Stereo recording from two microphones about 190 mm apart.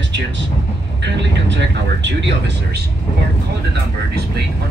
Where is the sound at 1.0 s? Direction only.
65° right (ahead or behind).